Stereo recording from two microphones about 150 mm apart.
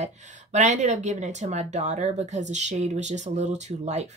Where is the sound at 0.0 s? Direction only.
50° right (ahead or behind).